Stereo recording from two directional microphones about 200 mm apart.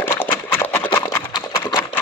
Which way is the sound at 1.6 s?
10° left (ahead or behind).